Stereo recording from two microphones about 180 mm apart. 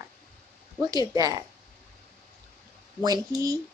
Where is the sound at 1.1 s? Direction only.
20° right (ahead or behind).